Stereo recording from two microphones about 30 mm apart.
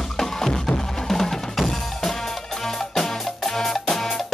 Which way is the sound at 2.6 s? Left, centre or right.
Centre.